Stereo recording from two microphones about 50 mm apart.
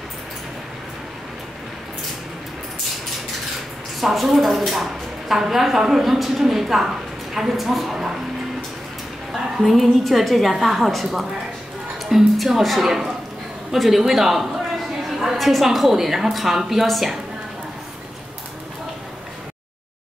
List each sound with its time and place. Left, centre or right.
4.0 s a woman's voice: centre
9.3 s a woman's voice: centre